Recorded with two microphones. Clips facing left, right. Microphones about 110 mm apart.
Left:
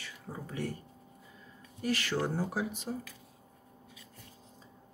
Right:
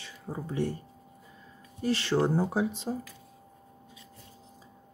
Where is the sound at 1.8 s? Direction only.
30° right (ahead or behind).